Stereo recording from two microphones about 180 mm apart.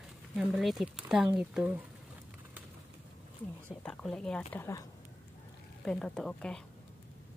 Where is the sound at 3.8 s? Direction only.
5° left (ahead or behind).